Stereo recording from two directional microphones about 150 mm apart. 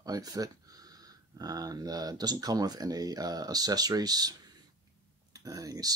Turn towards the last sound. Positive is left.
turn(degrees=-25)  # may be behind; listen again after turning